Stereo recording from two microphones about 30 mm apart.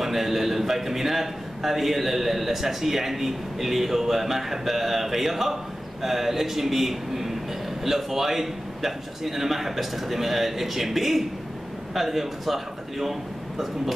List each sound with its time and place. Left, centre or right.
0.0 s a man's voice: centre